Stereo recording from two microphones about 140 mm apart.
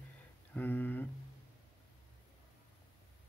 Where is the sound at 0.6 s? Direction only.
15° left (ahead or behind).